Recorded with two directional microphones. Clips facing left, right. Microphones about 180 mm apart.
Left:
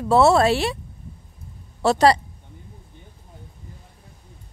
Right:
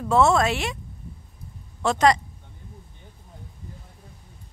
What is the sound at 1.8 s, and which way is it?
Speech, 35° left (ahead or behind).